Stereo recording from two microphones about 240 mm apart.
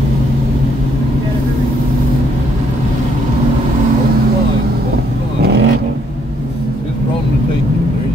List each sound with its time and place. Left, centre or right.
5.4 s vehicle: right